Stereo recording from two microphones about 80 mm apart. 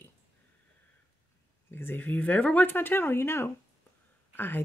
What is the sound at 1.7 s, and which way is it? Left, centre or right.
Speech, left.